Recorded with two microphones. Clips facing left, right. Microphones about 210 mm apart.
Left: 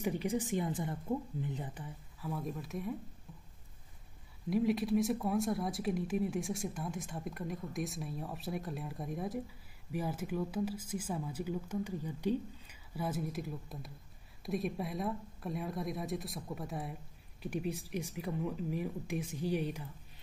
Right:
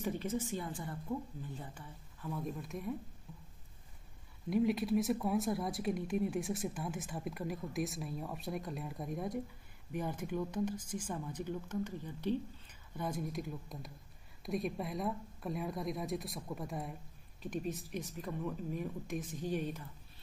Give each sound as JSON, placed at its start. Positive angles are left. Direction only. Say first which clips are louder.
{"t": 0.0, "sound": "speech", "louder": "left 2 dB", "side_deg": 15}
{"t": 2.2, "sound": "speech", "louder": "left 1 dB", "side_deg": 5}
{"t": 4.5, "sound": "speech", "louder": "left 1 dB", "side_deg": 0}